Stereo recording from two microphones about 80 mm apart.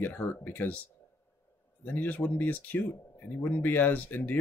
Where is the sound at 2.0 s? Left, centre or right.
Left.